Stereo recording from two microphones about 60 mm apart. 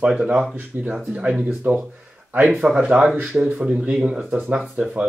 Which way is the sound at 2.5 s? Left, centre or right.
Centre.